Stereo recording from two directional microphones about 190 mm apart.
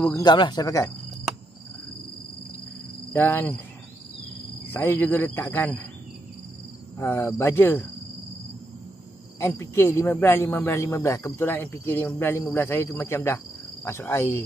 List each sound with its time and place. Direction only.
0.0 s speech: 20° left (ahead or behind)
3.1 s speech: 10° left (ahead or behind)
4.6 s speech: 10° left (ahead or behind)
7.0 s speech: 10° left (ahead or behind)
9.4 s speech: 15° left (ahead or behind)